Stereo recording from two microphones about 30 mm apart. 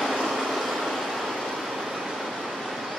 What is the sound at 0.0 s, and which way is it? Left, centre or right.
Vehicle, centre.